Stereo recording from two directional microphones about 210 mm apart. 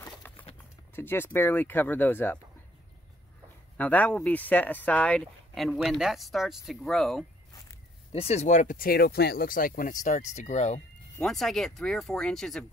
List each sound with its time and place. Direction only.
0.0 s clip-clop: 10° left (ahead or behind)
0.9 s speech: 10° left (ahead or behind)
3.7 s speech: 5° left (ahead or behind)
8.1 s speech: 30° left (ahead or behind)
11.1 s speech: centre (ahead or behind)